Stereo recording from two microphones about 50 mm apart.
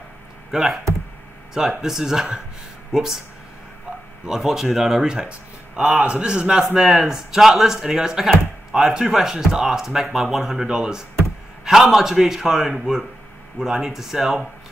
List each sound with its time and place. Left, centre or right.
0.5 s speech: centre
4.3 s a man's voice: centre